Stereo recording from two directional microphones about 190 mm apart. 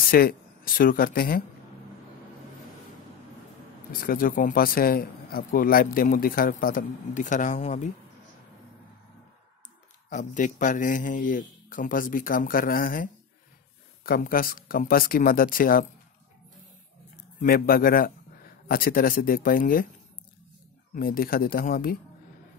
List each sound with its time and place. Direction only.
0.1 s speech: 50° left (ahead or behind)
4.0 s speech: 50° left (ahead or behind)
10.0 s speech: 40° left (ahead or behind)
17.4 s speech: 50° left (ahead or behind)
20.9 s speech: 50° left (ahead or behind)